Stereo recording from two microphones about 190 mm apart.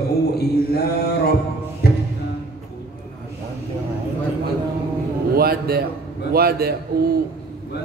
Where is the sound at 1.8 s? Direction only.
55° left (ahead or behind).